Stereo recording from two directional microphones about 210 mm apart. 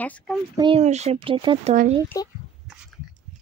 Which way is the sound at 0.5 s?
20° right (ahead or behind).